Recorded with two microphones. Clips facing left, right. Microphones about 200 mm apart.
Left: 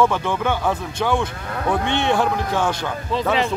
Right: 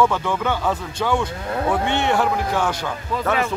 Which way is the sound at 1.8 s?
15° right (ahead or behind).